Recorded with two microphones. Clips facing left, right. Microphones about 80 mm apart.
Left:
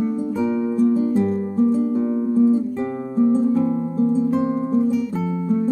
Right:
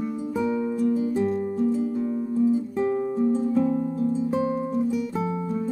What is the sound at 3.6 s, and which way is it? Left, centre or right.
Harp, left.